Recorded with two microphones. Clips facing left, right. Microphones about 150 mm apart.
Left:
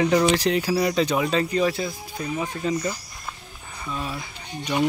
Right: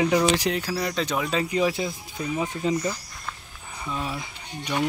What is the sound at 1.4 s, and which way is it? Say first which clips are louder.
Speech: left 1 dB; 15° right (ahead or behind).